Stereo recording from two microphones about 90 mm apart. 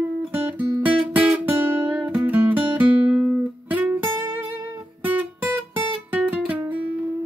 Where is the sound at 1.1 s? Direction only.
15° right (ahead or behind).